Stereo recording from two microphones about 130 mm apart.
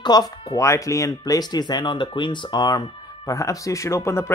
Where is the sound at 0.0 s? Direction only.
35° left (ahead or behind).